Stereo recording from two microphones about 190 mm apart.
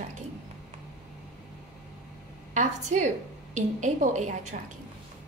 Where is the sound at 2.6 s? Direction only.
40° right (ahead or behind).